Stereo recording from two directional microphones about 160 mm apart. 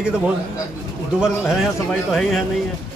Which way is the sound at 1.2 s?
Centre (ahead or behind).